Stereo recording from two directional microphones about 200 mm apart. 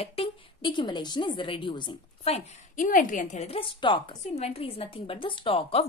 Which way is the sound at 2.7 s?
40° left (ahead or behind).